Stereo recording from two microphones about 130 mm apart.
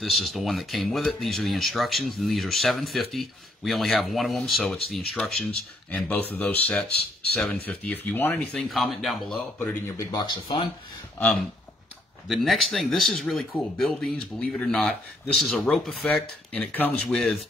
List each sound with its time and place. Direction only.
0.0 s speech: centre (ahead or behind)
8.5 s speech: centre (ahead or behind)
9.9 s speech: 35° left (ahead or behind)
12.3 s speech: centre (ahead or behind)
16.5 s speech: 10° left (ahead or behind)